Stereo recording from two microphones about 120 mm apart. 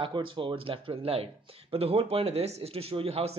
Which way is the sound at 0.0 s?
45° right (ahead or behind).